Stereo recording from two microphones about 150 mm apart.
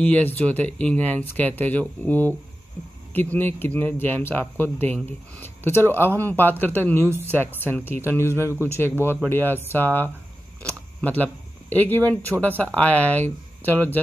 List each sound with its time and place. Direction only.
0.0 s speech: 10° left (ahead or behind)
8.3 s speech: 15° right (ahead or behind)
9.3 s speech: 15° left (ahead or behind)
10.6 s a sound: 10° left (ahead or behind)
11.7 s speech: 10° left (ahead or behind)